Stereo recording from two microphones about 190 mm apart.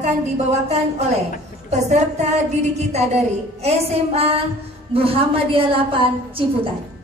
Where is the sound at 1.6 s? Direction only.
35° right (ahead or behind).